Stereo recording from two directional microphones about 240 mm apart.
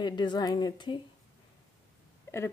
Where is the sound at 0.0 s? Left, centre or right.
Centre.